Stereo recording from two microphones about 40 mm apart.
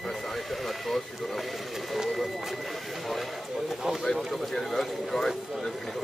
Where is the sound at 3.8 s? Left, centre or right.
Centre.